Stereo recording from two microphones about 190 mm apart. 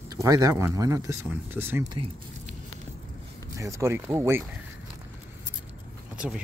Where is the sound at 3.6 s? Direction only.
15° right (ahead or behind).